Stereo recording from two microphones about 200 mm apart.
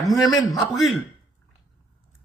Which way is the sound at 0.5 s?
Centre (ahead or behind).